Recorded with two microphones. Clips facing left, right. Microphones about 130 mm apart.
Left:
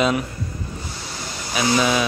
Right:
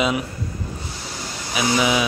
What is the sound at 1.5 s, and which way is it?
Speech, 10° right (ahead or behind).